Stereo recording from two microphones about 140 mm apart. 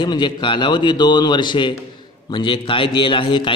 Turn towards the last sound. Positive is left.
turn(degrees=35)  # may be behind; listen again after turning